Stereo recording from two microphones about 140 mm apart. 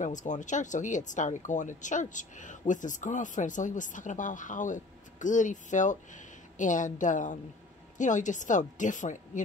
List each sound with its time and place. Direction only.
0.0 s speech: 65° left (ahead or behind)